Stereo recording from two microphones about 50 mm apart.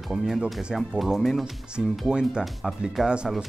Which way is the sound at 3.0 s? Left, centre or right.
Centre.